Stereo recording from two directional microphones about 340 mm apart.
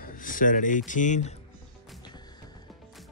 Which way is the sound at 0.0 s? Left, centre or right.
Left.